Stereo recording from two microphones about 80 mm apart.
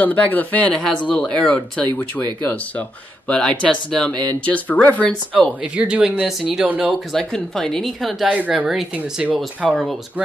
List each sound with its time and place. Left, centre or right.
0.0 s speech: left
1.8 s speech: left
3.3 s speech: centre
5.6 s speech: centre
6.6 s speech: centre
6.9 s speech: centre
8.3 s speech: centre